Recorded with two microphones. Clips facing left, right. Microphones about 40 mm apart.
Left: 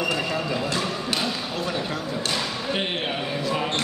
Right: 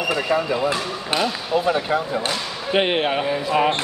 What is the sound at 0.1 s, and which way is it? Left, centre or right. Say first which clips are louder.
Speech: right 5 dB; right.